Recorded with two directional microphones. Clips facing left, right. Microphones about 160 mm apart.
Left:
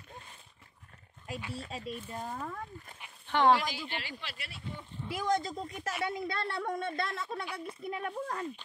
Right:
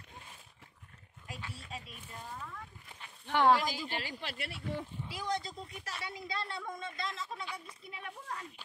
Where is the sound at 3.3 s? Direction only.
10° right (ahead or behind).